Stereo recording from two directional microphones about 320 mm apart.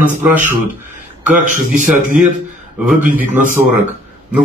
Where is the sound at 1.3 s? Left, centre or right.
Right.